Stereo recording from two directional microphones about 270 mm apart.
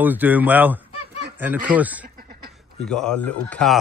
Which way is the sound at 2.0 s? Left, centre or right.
Right.